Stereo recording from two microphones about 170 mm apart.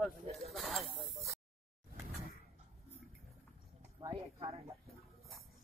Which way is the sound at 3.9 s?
25° right (ahead or behind).